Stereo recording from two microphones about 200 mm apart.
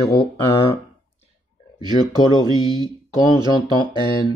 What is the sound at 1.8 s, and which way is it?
Speech, 20° right (ahead or behind).